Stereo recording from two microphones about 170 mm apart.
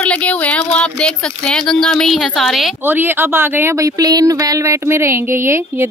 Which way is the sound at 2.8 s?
10° right (ahead or behind).